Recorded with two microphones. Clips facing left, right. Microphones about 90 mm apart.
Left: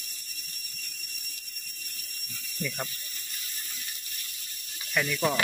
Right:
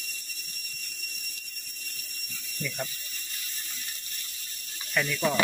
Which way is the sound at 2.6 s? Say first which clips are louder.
Even; 10° left (ahead or behind).